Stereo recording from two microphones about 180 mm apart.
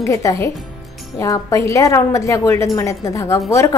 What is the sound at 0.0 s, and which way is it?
A woman's voice, 15° left (ahead or behind).